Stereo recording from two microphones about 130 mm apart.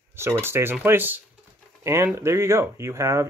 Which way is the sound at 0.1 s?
20° right (ahead or behind).